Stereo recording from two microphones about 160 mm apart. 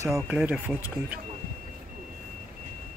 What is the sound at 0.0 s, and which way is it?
Speech, 20° right (ahead or behind).